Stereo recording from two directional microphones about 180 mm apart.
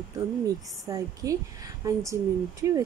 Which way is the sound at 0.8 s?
20° right (ahead or behind).